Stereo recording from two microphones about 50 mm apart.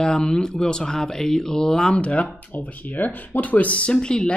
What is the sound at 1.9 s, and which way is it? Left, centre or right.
Speech, left.